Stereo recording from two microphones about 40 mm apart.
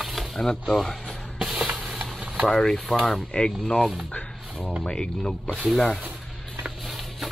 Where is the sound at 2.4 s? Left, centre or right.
Centre.